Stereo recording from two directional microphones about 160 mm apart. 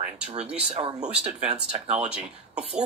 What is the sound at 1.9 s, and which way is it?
Speech, 5° right (ahead or behind).